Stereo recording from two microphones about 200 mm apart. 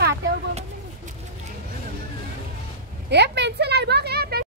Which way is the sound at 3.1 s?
55° right (ahead or behind).